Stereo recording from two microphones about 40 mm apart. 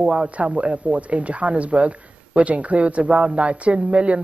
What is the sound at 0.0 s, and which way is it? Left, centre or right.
Speech, right.